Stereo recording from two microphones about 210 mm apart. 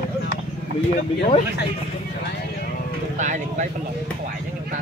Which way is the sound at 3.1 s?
35° right (ahead or behind).